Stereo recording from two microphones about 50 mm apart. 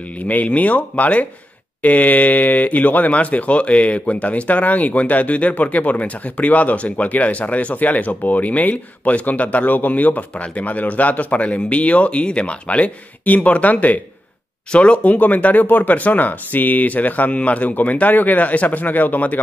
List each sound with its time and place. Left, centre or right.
0.2 s speech: left
14.7 s speech: left